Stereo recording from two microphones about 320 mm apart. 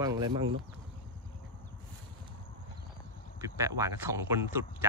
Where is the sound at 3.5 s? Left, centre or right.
Centre.